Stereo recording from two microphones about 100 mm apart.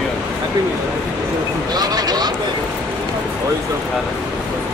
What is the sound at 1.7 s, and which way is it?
Speech, 40° right (ahead or behind).